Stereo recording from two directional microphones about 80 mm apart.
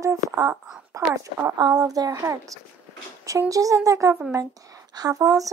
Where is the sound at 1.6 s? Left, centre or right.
Right.